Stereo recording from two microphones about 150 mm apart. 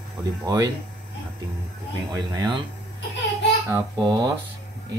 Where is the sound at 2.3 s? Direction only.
30° right (ahead or behind).